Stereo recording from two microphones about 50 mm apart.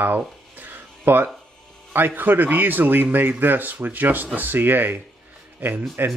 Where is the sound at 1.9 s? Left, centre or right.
Right.